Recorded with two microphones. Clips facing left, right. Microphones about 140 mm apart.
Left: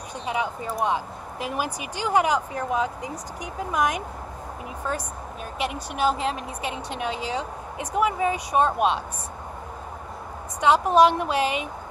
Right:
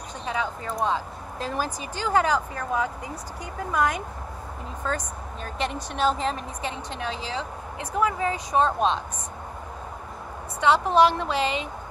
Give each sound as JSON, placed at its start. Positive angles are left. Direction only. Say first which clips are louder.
{"t": 0.2, "sound": "a woman's voice", "louder": "left 2 dB", "side_deg": 15}
{"t": 10.6, "sound": "a woman's voice", "louder": "left 2 dB", "side_deg": 15}